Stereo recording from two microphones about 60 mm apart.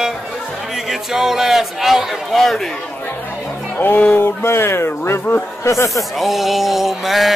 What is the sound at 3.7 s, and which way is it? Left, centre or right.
Speech, left.